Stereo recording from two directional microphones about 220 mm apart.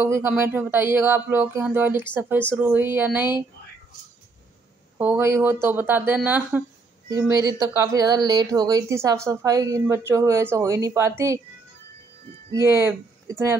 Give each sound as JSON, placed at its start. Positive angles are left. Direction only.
{"t": 0.0, "sound": "speech", "side_deg": -10}
{"t": 4.9, "sound": "speech", "side_deg": -10}
{"t": 12.4, "sound": "speech", "side_deg": -15}